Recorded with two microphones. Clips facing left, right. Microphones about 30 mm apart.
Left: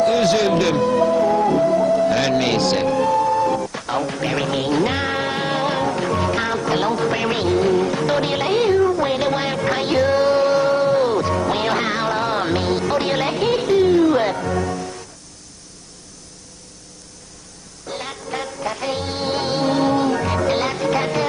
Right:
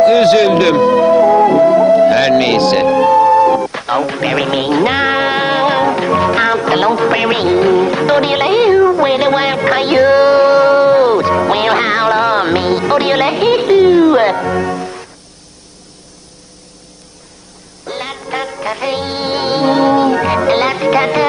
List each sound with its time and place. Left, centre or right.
0.0 s speech: right
17.8 s music: right